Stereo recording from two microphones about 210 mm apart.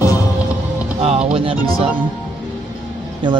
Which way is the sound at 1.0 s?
30° right (ahead or behind).